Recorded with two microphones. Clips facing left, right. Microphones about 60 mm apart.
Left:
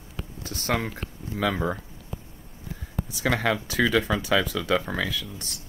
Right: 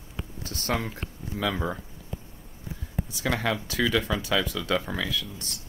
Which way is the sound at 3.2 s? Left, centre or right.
Left.